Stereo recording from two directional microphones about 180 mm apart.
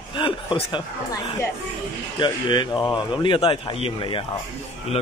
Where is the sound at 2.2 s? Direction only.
25° left (ahead or behind).